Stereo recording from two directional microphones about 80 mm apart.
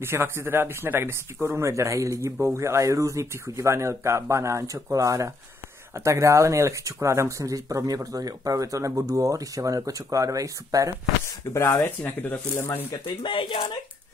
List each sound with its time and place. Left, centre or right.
0.0 s speech: right
11.5 s speech: left
13.0 s speech: left